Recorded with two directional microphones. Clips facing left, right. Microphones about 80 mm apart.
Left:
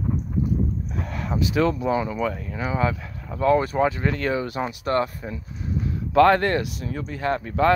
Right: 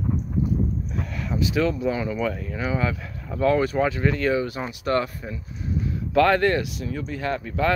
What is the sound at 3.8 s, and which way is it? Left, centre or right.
Speech, left.